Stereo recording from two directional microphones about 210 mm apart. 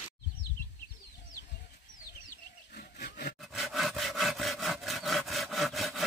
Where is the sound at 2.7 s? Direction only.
45° left (ahead or behind).